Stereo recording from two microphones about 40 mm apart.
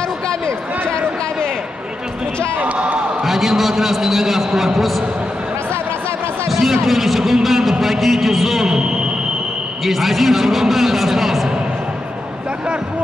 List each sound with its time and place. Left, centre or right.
0.3 s a sound: left
2.6 s speech: right
3.3 s a man's voice: centre
6.5 s a man's voice: centre
9.8 s a man's voice: centre